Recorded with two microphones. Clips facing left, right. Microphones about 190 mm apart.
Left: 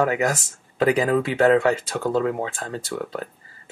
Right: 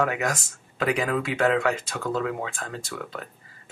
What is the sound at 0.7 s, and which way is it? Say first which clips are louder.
Speech: left 6 dB; 30° left (ahead or behind).